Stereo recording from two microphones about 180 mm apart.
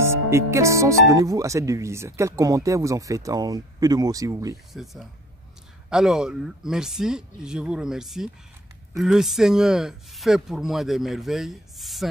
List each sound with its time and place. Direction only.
0.0 s speech: 15° right (ahead or behind)
5.9 s speech: 5° right (ahead or behind)